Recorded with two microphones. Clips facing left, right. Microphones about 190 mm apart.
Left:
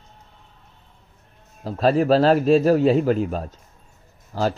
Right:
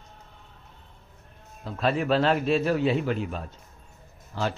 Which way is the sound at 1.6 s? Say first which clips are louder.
Left 7 dB; 40° left (ahead or behind).